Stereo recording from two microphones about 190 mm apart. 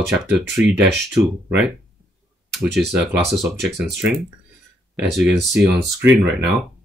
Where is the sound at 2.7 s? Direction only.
Centre (ahead or behind).